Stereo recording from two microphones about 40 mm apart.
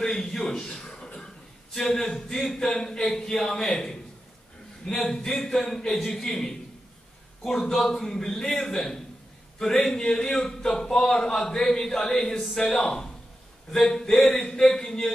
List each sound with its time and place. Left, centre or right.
0.0 s a sound: centre
1.7 s speech: centre
5.4 s speech: centre
14.2 s speech: left
14.5 s speech: centre